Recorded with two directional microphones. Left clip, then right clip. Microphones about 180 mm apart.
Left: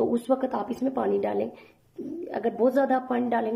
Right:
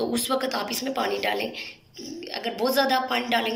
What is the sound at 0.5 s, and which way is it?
Speech, 40° left (ahead or behind).